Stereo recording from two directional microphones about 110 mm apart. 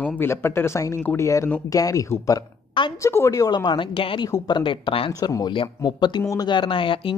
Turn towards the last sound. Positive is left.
turn(degrees=50)  # may be behind; listen again after turning